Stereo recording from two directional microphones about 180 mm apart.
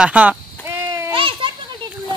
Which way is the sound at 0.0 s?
5° right (ahead or behind).